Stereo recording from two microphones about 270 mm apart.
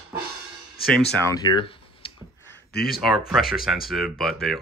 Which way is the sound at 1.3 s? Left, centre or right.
Centre.